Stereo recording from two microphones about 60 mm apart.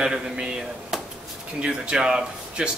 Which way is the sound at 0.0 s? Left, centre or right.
Centre.